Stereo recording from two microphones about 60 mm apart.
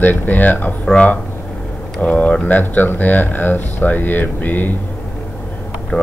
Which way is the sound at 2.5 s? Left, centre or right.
Left.